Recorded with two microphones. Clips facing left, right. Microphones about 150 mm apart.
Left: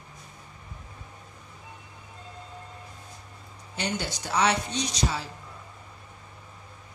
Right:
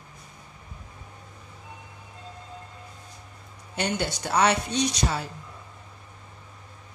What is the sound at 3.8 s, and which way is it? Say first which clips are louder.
A woman's voice: right 4 dB; 60° right (ahead or behind).